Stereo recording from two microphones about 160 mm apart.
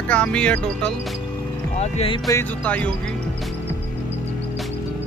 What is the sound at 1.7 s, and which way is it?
Speech, 45° left (ahead or behind).